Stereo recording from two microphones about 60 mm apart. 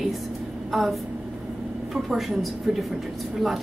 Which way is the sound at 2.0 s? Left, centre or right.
Centre.